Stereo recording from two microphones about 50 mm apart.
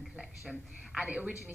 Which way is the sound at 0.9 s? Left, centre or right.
Right.